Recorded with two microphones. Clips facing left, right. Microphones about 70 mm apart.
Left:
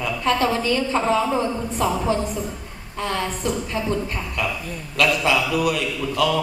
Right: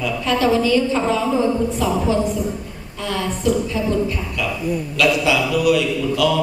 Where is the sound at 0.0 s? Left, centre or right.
Left.